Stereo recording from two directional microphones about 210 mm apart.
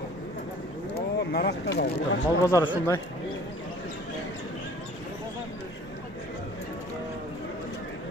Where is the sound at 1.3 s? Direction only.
50° left (ahead or behind).